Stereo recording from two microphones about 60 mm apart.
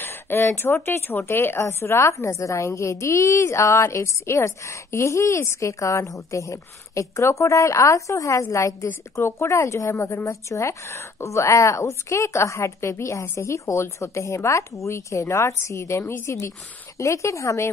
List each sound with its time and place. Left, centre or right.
0.0 s a sound: left
0.8 s a woman's voice: left
9.1 s a woman's voice: left